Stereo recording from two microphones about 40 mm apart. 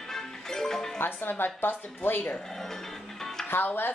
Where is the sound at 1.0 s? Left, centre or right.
Left.